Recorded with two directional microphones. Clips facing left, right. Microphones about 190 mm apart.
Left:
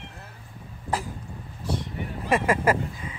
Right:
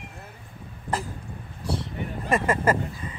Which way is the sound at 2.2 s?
10° left (ahead or behind).